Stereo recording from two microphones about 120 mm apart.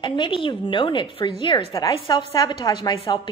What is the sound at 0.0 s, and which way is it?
A woman's voice, 45° left (ahead or behind).